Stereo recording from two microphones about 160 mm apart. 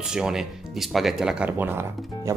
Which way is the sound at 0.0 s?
5° right (ahead or behind).